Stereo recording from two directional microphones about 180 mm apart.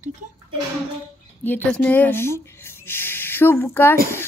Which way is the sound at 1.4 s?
10° left (ahead or behind).